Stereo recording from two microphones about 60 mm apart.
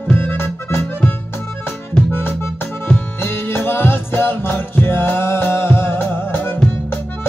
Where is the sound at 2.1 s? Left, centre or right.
Left.